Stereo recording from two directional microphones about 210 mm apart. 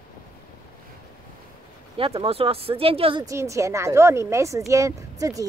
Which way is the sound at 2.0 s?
25° right (ahead or behind).